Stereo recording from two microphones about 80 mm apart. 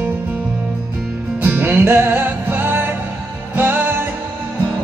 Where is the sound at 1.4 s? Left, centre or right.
Right.